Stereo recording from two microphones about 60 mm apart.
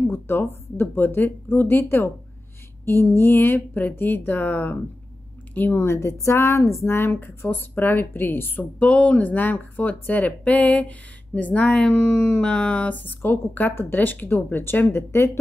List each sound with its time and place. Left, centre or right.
0.0 s speech: left
5.5 s speech: left
5.9 s speech: left
7.0 s speech: left
8.7 s speech: left
12.1 s a sound: centre
12.4 s a sound: centre
12.9 s speech: left